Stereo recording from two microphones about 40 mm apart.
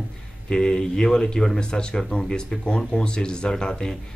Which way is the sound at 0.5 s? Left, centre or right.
Centre.